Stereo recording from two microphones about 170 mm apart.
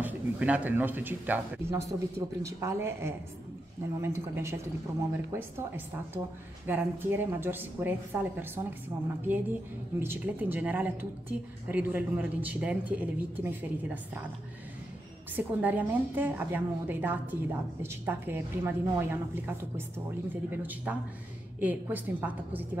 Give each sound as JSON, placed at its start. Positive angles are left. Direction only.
{"t": 0.0, "sound": "a woman's voice", "side_deg": -10}
{"t": 15.3, "sound": "a woman's voice", "side_deg": -10}